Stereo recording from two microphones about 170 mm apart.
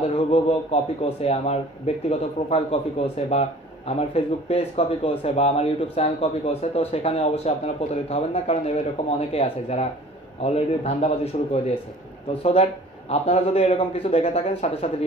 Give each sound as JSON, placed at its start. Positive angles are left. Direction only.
{"t": 0.0, "sound": "speech", "side_deg": 35}
{"t": 13.1, "sound": "speech", "side_deg": 35}